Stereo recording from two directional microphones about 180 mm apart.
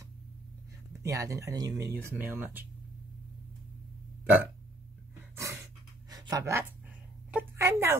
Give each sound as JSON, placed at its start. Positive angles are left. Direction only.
{"t": 1.0, "sound": "speech", "side_deg": -15}
{"t": 5.3, "sound": "dog", "side_deg": -15}
{"t": 7.2, "sound": "a woman's voice", "side_deg": -10}